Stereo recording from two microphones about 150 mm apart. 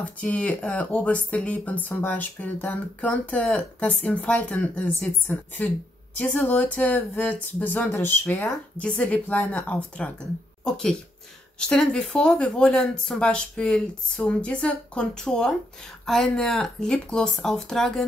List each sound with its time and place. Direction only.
0.0 s speech: 10° left (ahead or behind)